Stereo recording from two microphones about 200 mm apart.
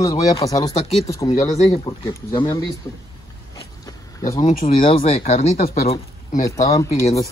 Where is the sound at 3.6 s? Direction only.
20° left (ahead or behind).